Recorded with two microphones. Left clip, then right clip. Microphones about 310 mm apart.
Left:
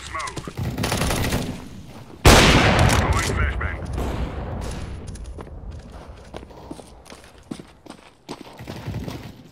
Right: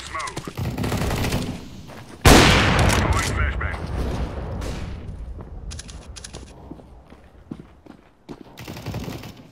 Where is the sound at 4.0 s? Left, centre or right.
Centre.